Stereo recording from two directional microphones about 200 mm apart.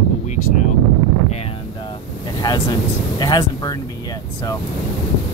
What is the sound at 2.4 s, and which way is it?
Speech, 20° left (ahead or behind).